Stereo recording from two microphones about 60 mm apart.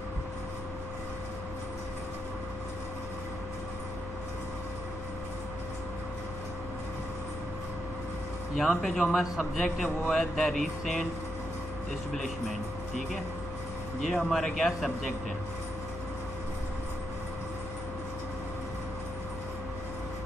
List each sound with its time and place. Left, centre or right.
8.5 s speech: centre
12.1 s speech: centre
14.0 s speech: centre